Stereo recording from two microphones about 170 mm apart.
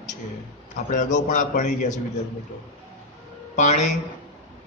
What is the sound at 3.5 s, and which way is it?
Speech, 45° left (ahead or behind).